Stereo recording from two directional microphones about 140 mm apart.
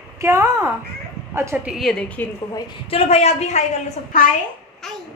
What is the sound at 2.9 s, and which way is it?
Speech, 50° left (ahead or behind).